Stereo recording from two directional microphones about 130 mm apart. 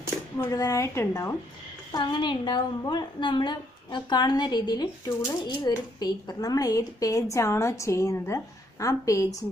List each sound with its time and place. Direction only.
0.4 s speech: 25° left (ahead or behind)
1.9 s a woman's voice: 35° left (ahead or behind)